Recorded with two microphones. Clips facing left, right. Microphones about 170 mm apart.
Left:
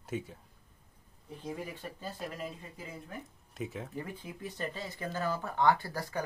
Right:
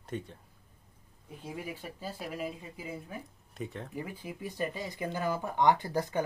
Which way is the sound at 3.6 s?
Centre (ahead or behind).